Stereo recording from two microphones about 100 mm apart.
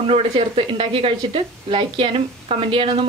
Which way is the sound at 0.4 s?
60° right (ahead or behind).